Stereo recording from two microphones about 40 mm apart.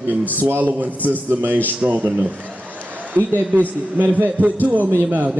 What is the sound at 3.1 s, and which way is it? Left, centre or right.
Speech, right.